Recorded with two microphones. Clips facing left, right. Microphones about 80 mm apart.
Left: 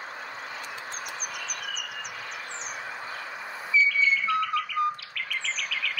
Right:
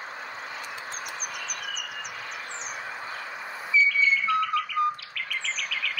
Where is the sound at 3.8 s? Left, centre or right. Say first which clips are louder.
Right 1 dB; centre.